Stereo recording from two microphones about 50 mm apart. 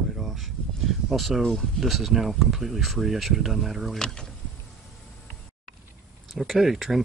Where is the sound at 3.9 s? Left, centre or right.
Centre.